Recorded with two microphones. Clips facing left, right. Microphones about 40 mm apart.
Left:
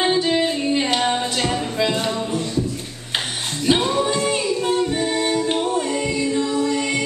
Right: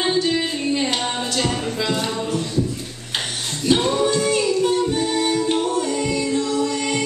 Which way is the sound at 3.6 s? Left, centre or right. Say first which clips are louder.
Even; centre.